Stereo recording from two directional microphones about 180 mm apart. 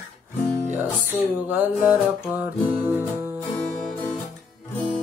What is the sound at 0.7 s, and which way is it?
Music, 10° right (ahead or behind).